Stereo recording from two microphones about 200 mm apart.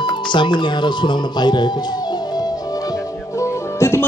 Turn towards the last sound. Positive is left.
turn(degrees=15)  # may be behind; listen again after turning